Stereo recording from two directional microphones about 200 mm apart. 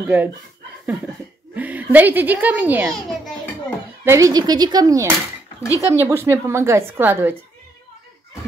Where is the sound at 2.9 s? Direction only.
5° left (ahead or behind).